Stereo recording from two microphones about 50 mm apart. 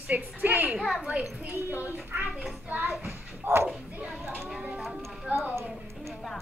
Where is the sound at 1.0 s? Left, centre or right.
Centre.